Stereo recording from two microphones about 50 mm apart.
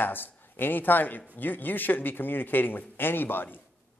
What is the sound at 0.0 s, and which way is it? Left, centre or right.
A man's voice, left.